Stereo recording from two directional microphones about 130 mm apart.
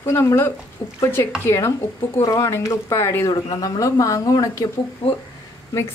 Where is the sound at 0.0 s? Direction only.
20° left (ahead or behind).